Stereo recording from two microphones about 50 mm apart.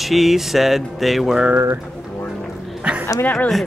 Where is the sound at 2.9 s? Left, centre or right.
Right.